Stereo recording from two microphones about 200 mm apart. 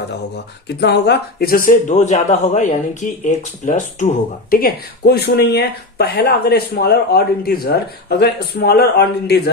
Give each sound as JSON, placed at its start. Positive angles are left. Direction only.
{"t": 0.7, "sound": "speech", "side_deg": 55}